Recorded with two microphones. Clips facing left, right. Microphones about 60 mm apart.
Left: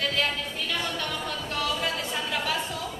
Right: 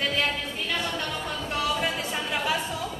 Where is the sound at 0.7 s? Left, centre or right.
Centre.